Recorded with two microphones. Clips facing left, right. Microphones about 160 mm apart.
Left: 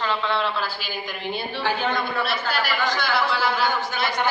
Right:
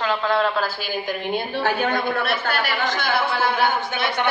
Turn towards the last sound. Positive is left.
turn(degrees=-60)  # may be behind; listen again after turning